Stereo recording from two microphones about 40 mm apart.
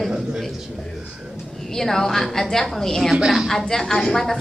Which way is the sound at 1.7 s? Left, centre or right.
Centre.